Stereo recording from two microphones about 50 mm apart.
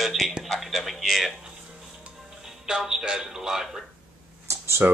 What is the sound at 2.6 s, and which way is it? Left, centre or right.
A man's voice, centre.